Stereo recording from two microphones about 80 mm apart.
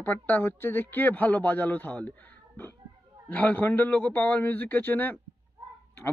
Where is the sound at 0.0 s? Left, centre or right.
Left.